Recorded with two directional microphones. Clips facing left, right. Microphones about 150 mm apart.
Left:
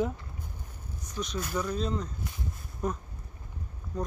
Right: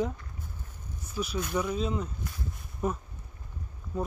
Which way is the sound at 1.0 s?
5° right (ahead or behind).